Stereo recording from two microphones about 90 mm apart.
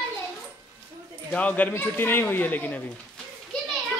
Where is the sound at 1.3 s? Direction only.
15° left (ahead or behind).